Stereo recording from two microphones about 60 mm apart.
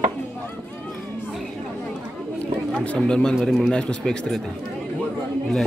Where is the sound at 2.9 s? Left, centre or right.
Centre.